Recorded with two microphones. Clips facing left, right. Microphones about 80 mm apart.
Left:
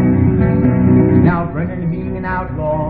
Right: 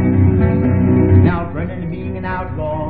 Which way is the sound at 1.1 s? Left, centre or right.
Centre.